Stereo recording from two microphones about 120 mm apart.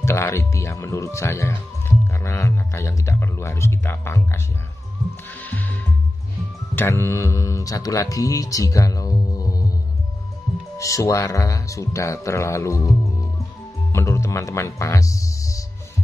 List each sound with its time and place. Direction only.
0.0 s speech: 20° left (ahead or behind)
5.3 s music: 15° left (ahead or behind)
6.7 s speech: 20° left (ahead or behind)
10.8 s speech: 25° left (ahead or behind)
13.9 s speech: 25° left (ahead or behind)